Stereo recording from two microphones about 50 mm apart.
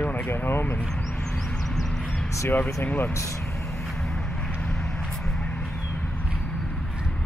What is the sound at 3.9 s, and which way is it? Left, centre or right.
Vehicle, centre.